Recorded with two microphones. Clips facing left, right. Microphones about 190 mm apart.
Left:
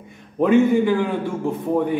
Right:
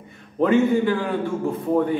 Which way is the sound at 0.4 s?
15° left (ahead or behind).